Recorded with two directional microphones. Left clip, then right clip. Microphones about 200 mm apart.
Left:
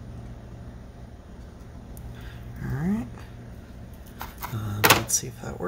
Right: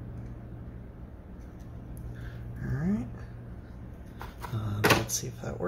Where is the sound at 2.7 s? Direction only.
25° left (ahead or behind).